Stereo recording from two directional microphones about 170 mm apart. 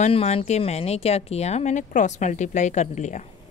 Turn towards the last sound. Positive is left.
turn(degrees=45)  # may be behind; listen again after turning